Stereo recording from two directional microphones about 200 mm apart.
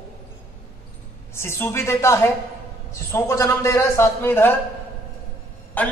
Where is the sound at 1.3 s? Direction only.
10° left (ahead or behind).